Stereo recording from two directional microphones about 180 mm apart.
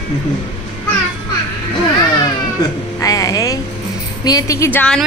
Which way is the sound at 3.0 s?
20° left (ahead or behind).